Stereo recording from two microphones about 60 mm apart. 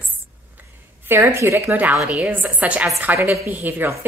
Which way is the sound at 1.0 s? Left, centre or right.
Right.